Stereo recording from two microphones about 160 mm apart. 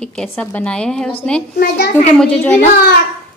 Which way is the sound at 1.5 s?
90° left.